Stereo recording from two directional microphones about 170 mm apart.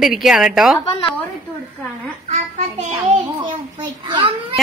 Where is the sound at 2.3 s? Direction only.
40° right (ahead or behind).